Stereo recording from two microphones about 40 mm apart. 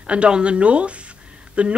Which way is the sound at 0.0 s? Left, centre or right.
Right.